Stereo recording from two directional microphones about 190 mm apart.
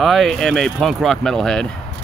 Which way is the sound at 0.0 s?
Centre (ahead or behind).